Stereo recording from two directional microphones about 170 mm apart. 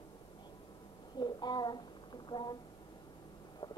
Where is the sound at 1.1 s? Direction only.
25° left (ahead or behind).